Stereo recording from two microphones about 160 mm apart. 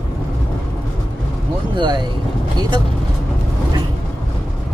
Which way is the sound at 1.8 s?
30° right (ahead or behind).